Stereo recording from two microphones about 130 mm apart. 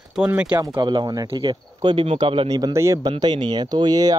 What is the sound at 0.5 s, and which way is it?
Speech, 35° right (ahead or behind).